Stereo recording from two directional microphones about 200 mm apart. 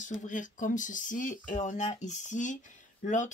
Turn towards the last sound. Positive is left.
turn(degrees=40)  # may be behind; listen again after turning